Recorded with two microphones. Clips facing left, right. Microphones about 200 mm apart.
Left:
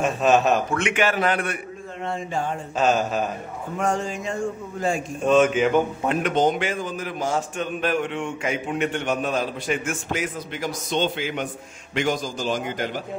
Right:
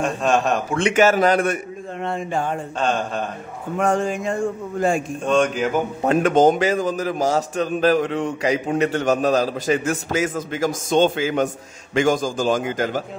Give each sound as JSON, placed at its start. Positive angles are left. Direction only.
{"t": 0.0, "sound": "speech", "side_deg": 5}
{"t": 0.7, "sound": "a man's voice", "side_deg": -40}
{"t": 2.0, "sound": "speech", "side_deg": -55}
{"t": 2.8, "sound": "speech", "side_deg": 5}
{"t": 3.8, "sound": "a man's voice", "side_deg": -55}
{"t": 5.2, "sound": "speech", "side_deg": 5}
{"t": 6.0, "sound": "a man's voice", "side_deg": -45}